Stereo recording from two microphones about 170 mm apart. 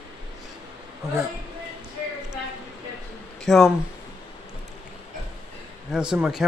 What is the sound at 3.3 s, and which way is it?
Speech, centre (ahead or behind).